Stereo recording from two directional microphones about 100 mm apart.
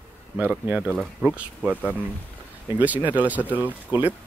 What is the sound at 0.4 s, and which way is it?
Speech, 15° right (ahead or behind).